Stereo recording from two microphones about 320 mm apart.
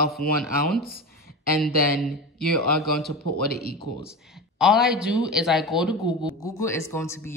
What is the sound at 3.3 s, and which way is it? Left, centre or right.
Speech, left.